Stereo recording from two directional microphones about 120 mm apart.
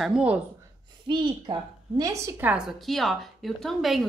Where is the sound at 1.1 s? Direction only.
40° right (ahead or behind).